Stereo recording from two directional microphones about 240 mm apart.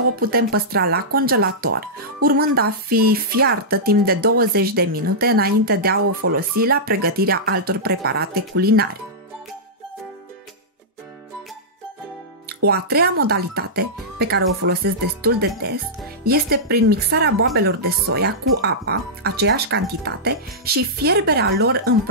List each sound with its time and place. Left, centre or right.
0.1 s speech: right
12.6 s speech: right